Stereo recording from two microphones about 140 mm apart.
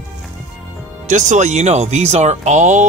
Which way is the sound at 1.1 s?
60° right (ahead or behind).